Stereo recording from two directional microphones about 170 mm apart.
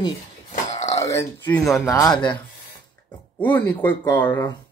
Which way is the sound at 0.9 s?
20° left (ahead or behind).